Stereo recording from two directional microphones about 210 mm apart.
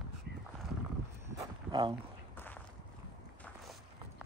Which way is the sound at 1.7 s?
20° right (ahead or behind).